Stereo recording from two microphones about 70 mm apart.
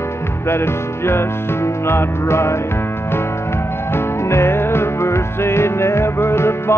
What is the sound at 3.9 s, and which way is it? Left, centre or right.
Music, left.